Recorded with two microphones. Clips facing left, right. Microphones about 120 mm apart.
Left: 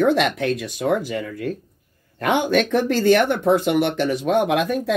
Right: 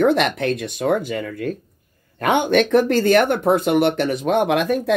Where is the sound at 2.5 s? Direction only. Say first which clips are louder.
Right 3 dB; 60° right (ahead or behind).